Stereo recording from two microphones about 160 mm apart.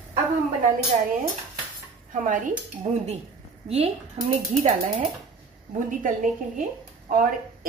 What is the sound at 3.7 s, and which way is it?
Speech, 45° right (ahead or behind).